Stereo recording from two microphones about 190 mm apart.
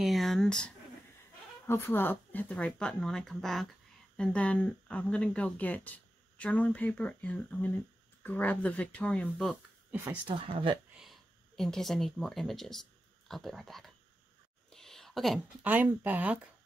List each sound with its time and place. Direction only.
0.0 s speech: centre (ahead or behind)
10.2 s speech: 25° right (ahead or behind)
11.0 s a woman's voice: centre (ahead or behind)